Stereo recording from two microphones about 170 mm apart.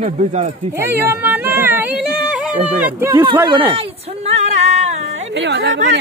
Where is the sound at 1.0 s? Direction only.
15° right (ahead or behind).